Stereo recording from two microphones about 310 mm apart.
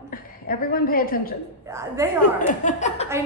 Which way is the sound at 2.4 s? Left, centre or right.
Left.